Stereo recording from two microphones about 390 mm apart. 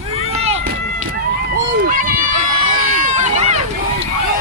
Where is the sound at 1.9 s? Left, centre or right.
Centre.